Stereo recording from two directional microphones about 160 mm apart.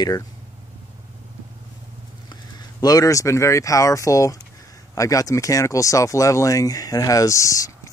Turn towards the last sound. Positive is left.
turn(degrees=20)  # may be behind; listen again after turning